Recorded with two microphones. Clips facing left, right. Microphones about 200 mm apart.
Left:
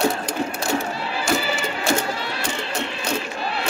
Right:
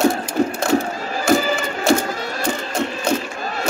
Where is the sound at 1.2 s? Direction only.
45° right (ahead or behind).